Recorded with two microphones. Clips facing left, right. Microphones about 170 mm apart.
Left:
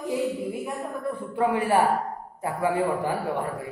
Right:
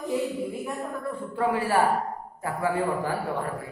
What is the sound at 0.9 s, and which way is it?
A man's voice, 20° left (ahead or behind).